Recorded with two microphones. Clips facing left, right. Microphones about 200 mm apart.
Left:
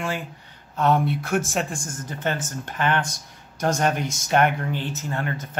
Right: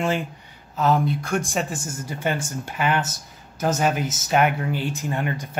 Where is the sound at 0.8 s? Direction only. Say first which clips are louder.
Even; centre (ahead or behind).